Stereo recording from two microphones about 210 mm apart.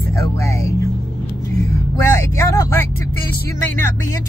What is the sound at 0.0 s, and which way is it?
Music, 15° left (ahead or behind).